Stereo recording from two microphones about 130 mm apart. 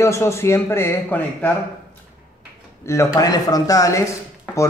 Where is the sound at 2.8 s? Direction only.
20° left (ahead or behind).